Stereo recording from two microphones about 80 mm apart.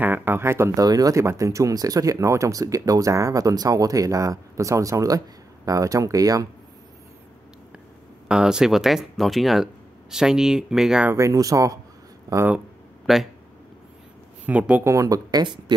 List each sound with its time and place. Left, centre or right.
0.0 s a sound: right
0.7 s speech: right
8.3 s speech: centre
11.1 s speech: right
12.5 s a sound: centre
14.4 s speech: centre
14.8 s speech: right